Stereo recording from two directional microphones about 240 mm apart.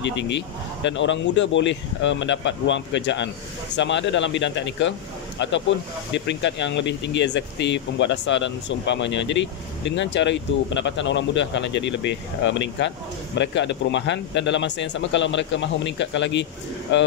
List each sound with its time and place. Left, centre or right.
0.8 s speech: left